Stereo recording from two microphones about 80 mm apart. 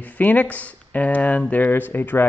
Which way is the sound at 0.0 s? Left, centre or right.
Centre.